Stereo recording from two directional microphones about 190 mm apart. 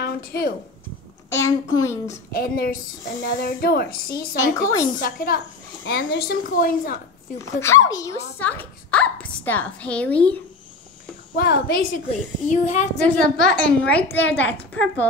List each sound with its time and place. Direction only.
0.0 s speech: 55° left (ahead or behind)
1.3 s a woman's voice: 15° left (ahead or behind)
2.3 s a woman's voice: 50° left (ahead or behind)
4.6 s a woman's voice: 15° left (ahead or behind)
5.0 s a woman's voice: 50° left (ahead or behind)
7.3 s a woman's voice: 15° left (ahead or behind)
11.3 s a woman's voice: 55° left (ahead or behind)
12.4 s a child's voice: 40° left (ahead or behind)
13.0 s a woman's voice: 5° left (ahead or behind)